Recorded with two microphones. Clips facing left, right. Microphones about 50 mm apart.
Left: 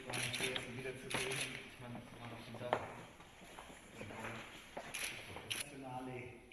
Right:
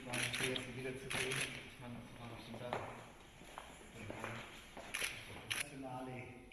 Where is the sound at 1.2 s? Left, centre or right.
Right.